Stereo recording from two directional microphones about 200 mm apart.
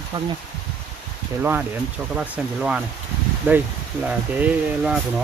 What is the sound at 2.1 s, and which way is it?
Speech, 5° right (ahead or behind).